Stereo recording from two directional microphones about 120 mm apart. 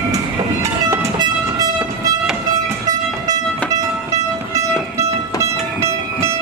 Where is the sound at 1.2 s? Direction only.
35° right (ahead or behind).